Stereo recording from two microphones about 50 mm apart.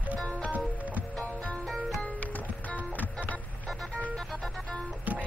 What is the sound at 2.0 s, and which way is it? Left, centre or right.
Music, left.